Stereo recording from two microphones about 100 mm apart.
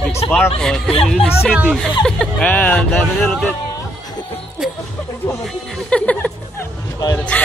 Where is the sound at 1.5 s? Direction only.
5° right (ahead or behind).